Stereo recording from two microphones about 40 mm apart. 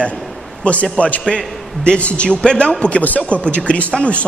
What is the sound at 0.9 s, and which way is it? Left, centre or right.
A man's voice, left.